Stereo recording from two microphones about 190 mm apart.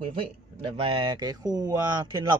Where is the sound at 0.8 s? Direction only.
30° right (ahead or behind).